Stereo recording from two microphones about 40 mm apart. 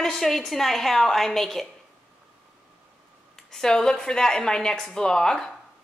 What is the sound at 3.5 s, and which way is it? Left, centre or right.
A woman's voice, centre.